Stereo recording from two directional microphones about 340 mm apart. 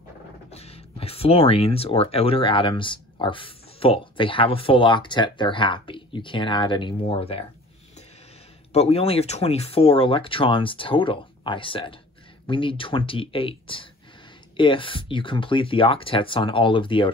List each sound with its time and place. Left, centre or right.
0.5 s speech: centre
8.7 s speech: centre